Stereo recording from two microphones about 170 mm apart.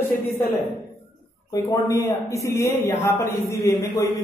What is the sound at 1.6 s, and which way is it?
Speech, 20° left (ahead or behind).